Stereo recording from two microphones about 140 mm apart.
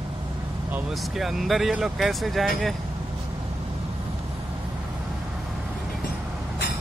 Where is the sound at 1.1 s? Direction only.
Centre (ahead or behind).